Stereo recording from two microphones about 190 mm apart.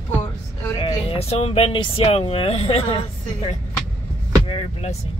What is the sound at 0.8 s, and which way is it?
Speech, 30° left (ahead or behind).